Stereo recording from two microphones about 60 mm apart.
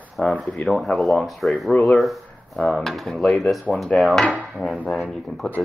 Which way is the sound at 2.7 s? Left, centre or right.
Centre.